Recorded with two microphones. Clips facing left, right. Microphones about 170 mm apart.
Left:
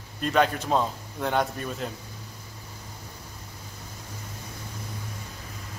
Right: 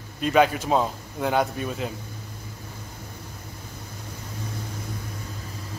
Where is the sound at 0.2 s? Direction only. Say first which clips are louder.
Right 3 dB; 5° right (ahead or behind).